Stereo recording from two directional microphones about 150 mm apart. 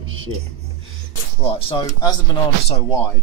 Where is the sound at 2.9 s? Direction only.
15° left (ahead or behind).